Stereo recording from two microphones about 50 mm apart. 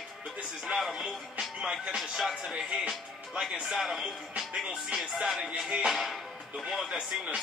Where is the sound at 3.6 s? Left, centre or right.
Centre.